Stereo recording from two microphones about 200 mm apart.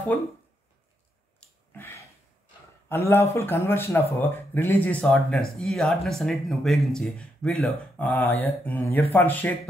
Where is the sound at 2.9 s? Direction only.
10° left (ahead or behind).